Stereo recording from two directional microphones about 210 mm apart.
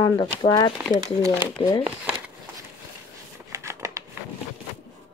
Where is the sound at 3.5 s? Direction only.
15° right (ahead or behind).